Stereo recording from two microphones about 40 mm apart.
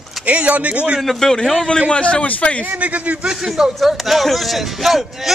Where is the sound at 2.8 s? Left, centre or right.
Right.